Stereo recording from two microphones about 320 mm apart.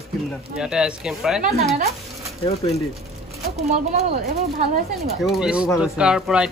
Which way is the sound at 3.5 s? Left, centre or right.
Right.